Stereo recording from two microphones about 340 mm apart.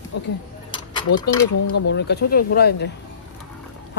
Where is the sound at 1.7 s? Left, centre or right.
Left.